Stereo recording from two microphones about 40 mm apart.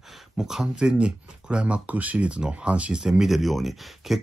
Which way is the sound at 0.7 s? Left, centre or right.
Right.